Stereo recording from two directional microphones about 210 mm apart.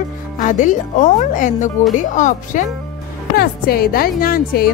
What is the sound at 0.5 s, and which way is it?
Speech, 35° left (ahead or behind).